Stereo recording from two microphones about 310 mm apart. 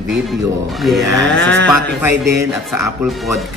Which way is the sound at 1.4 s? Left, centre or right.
Right.